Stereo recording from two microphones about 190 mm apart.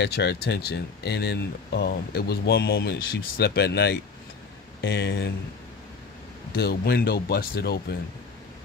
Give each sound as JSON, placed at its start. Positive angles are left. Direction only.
{"t": 0.0, "sound": "speech", "side_deg": 60}
{"t": 6.5, "sound": "speech", "side_deg": 55}